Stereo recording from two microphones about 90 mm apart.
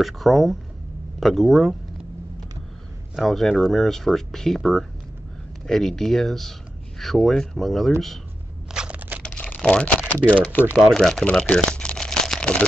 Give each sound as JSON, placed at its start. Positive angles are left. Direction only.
{"t": 0.0, "sound": "speech", "side_deg": 0}
{"t": 3.2, "sound": "speech", "side_deg": 0}
{"t": 8.7, "sound": "a sound", "side_deg": -5}
{"t": 9.2, "sound": "typing", "side_deg": 10}
{"t": 10.0, "sound": "speech", "side_deg": 15}
{"t": 10.8, "sound": "speech", "side_deg": 5}
{"t": 11.4, "sound": "crumpling", "side_deg": 10}